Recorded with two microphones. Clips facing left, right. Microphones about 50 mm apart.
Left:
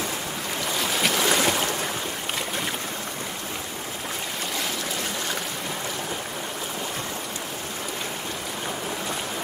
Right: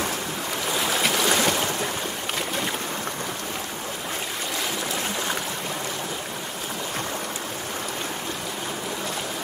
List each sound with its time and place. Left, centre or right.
0.7 s boat: centre